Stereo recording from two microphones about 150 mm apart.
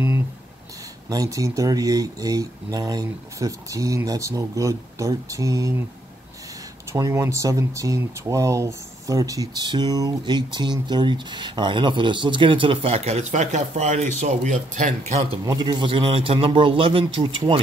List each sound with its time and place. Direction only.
1.0 s speech: 25° right (ahead or behind)
6.9 s speech: 20° right (ahead or behind); by 15.2 s 50° right (ahead or behind)
15.4 s speech: 30° right (ahead or behind)